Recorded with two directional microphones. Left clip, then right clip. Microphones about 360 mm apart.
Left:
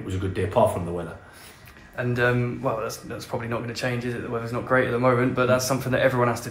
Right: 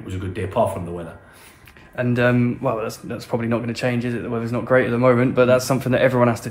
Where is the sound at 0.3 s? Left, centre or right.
Centre.